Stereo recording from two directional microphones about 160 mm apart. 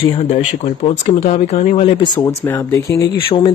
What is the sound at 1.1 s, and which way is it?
Speech, 40° left (ahead or behind).